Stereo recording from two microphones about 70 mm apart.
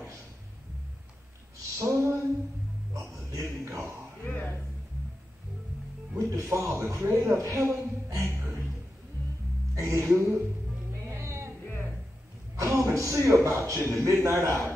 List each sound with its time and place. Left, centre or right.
1.6 s a sound: right
2.9 s music: right
4.2 s throat clearing: left
6.1 s music: right
6.7 s a man's voice: right
7.4 s a sound: right
9.8 s speech: right
11.1 s a sound: right
12.5 s a man's voice: right